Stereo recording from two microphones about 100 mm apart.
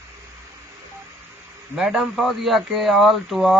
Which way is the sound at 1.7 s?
5° right (ahead or behind).